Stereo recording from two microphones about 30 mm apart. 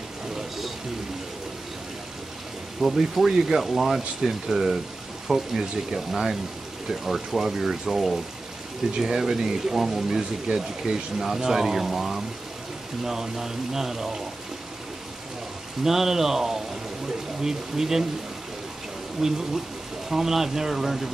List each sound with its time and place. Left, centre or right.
0.4 s a sound: centre
2.8 s speech: centre
15.8 s speech: centre
19.2 s speech: centre